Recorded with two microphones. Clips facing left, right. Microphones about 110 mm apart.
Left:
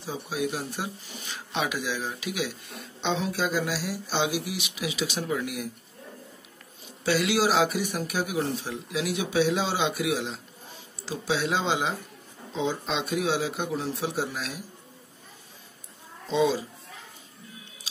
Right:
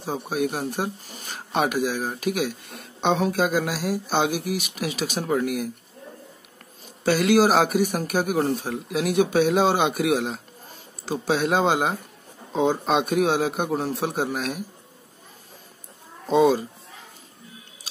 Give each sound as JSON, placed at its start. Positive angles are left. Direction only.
{"t": 0.0, "sound": "speech", "side_deg": -50}
{"t": 7.1, "sound": "speech", "side_deg": -45}
{"t": 16.3, "sound": "speech", "side_deg": -50}